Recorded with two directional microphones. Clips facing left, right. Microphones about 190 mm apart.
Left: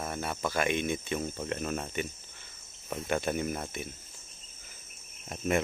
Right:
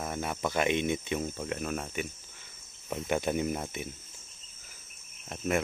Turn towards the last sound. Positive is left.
turn(degrees=0)  # may be behind; listen again after turning